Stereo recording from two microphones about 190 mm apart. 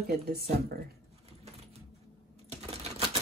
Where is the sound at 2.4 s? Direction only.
35° right (ahead or behind).